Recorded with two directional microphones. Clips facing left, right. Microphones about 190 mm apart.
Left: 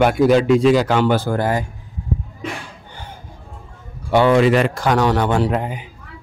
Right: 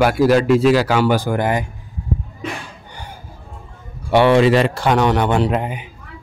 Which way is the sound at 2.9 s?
15° right (ahead or behind).